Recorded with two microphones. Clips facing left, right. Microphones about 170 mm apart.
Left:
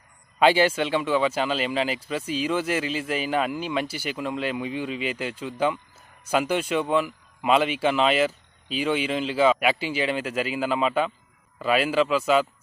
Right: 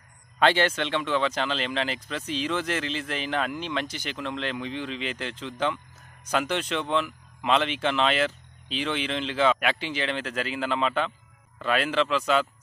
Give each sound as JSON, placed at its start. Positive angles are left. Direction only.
{"t": 0.4, "sound": "speech", "side_deg": 10}